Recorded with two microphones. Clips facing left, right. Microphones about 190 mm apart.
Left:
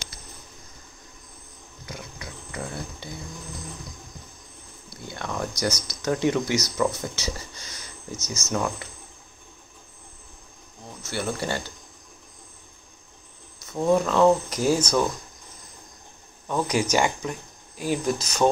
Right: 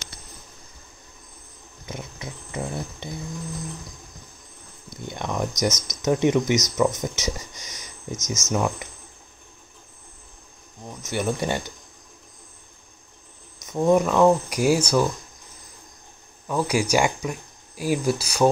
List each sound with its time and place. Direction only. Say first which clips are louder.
1.9 s a sound: right 4 dB; 25° right (ahead or behind)
4.8 s speech: right 3 dB; 20° right (ahead or behind)
11.0 s speech: right 4 dB; 15° right (ahead or behind)
13.7 s speech: right 3 dB; 15° right (ahead or behind)
16.4 s speech: right 1 dB; 10° right (ahead or behind)